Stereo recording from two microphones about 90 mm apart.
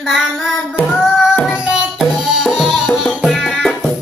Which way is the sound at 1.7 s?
Centre (ahead or behind).